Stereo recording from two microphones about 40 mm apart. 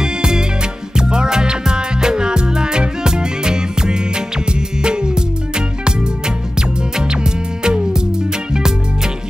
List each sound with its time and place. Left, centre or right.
0.0 s music: centre